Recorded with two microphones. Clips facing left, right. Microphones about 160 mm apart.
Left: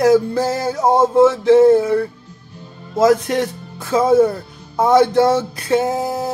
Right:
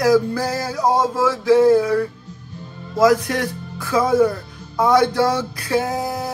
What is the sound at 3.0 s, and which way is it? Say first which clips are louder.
Music: left 2 dB; 25° left (ahead or behind).